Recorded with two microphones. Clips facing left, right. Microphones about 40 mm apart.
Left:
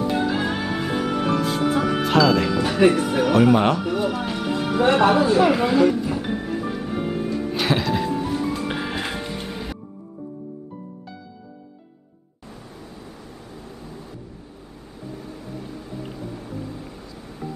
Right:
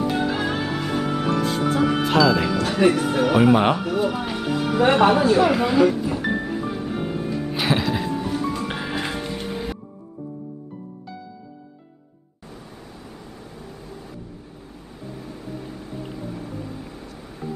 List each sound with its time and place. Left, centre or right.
0.0 s music: centre
2.7 s speech: centre
4.9 s music: centre
16.3 s music: centre
17.4 s music: right